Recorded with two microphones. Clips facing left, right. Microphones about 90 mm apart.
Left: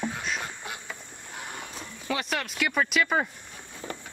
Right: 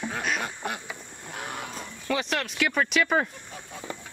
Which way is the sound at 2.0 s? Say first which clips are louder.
Right 2 dB; centre (ahead or behind).